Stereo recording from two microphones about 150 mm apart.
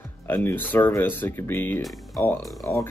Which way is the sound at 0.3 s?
15° left (ahead or behind).